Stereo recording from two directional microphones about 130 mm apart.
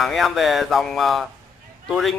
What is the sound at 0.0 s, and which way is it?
Speech, centre (ahead or behind).